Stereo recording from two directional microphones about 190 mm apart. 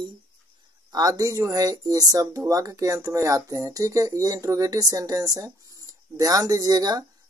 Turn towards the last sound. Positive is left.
turn(degrees=-20)  # may be behind; listen again after turning